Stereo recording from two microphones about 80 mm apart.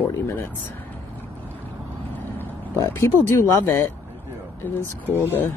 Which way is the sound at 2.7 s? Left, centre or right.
Left.